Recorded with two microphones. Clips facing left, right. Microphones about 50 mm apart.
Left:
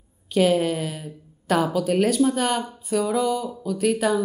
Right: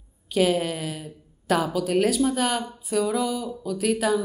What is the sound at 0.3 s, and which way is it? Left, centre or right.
Speech, centre.